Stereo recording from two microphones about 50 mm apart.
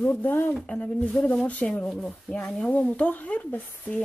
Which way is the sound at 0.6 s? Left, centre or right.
Centre.